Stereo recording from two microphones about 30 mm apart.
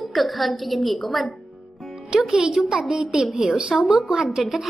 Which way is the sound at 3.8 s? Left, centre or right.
Right.